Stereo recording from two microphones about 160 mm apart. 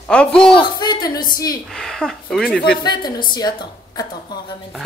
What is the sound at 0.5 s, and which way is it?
A woman's voice, 25° left (ahead or behind).